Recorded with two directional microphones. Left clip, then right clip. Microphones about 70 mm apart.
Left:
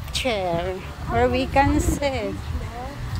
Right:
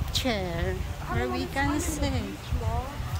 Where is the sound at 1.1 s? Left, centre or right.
Left.